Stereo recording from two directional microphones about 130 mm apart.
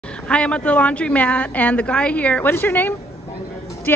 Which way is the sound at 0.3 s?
10° left (ahead or behind).